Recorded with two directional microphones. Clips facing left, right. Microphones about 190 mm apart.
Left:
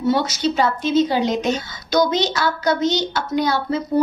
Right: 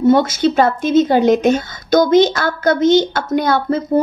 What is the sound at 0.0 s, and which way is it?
A woman's voice, 50° right (ahead or behind).